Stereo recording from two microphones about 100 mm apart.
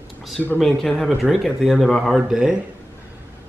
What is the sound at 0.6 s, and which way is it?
Speech, 5° left (ahead or behind).